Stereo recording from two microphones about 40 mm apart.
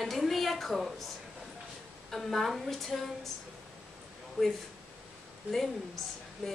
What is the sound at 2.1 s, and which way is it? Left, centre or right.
A woman's voice, centre.